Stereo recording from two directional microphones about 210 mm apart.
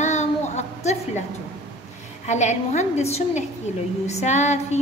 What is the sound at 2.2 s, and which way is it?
A woman's voice, 35° left (ahead or behind).